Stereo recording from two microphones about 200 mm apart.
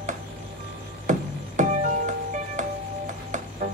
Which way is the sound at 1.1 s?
40° right (ahead or behind).